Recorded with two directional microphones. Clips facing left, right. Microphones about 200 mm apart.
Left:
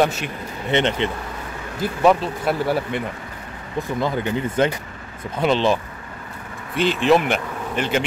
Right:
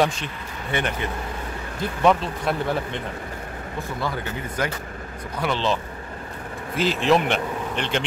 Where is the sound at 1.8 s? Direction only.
5° left (ahead or behind).